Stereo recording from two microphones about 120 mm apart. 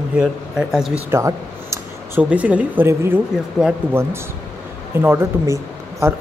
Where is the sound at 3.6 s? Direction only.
Centre (ahead or behind).